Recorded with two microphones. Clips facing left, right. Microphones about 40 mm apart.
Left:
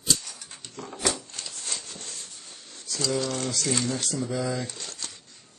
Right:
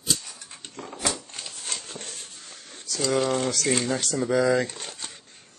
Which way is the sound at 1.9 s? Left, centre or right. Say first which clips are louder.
Right 3 dB; right.